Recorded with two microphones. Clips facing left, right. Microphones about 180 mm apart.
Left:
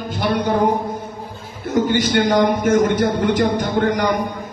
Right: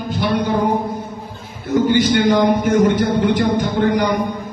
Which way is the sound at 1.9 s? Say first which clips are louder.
Right 4 dB; 45° left (ahead or behind).